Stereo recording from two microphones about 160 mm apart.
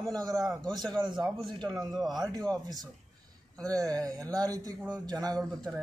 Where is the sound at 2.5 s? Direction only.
25° right (ahead or behind).